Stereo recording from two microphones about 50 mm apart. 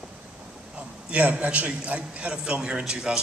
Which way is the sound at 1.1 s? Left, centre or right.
Right.